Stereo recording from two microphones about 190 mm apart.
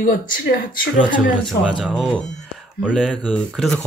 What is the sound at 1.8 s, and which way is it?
Speech, centre (ahead or behind).